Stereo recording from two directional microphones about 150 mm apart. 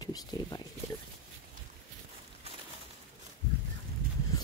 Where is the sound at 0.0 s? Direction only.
25° left (ahead or behind).